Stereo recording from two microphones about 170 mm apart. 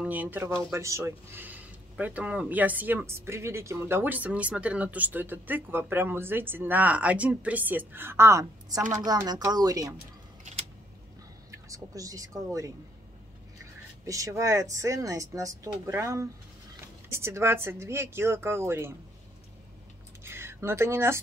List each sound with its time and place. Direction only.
0.0 s speech: 10° right (ahead or behind)
11.7 s speech: 20° right (ahead or behind)
14.0 s speech: 20° right (ahead or behind)
20.2 s a sound: 15° right (ahead or behind)